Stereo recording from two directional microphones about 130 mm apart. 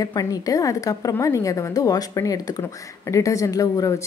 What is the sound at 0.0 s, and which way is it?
Speech, 30° left (ahead or behind).